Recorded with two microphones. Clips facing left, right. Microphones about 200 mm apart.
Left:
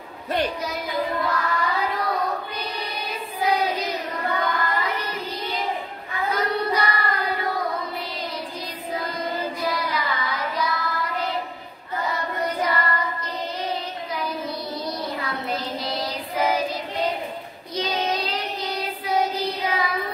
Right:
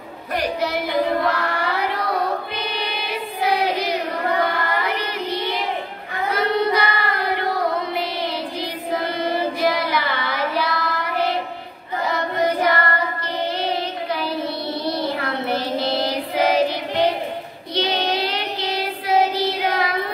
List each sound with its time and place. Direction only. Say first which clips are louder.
0.6 s child singing: right 6 dB; 70° right (ahead or behind)
2.5 s choir: right 4 dB; 75° right (ahead or behind)
4.5 s child singing: right 2 dB; 70° right (ahead or behind)
6.6 s child singing: right 4 dB; 70° right (ahead or behind)
12.1 s music: right 7 dB; 80° right
15.0 s child singing: right 5 dB; 75° right (ahead or behind)